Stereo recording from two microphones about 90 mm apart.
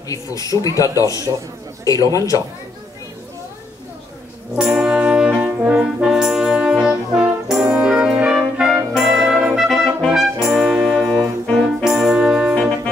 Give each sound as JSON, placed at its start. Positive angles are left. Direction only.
{"t": 0.1, "sound": "a man's voice", "side_deg": 40}
{"t": 4.7, "sound": "brass instrument", "side_deg": -10}
{"t": 11.1, "sound": "music", "side_deg": 5}
{"t": 11.9, "sound": "brass instrument", "side_deg": -5}